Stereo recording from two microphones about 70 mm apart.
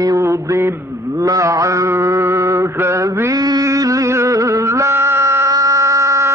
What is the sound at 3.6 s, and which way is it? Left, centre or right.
Music, right.